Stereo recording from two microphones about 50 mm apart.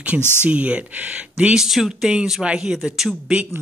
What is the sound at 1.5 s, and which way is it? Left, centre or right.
Speech, centre.